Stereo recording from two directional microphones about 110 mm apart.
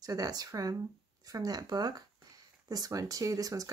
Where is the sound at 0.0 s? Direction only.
35° right (ahead or behind).